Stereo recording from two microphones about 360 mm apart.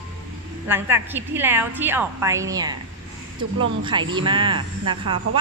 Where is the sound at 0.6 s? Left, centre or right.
Centre.